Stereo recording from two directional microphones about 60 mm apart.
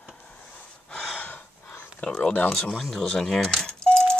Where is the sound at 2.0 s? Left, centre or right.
Centre.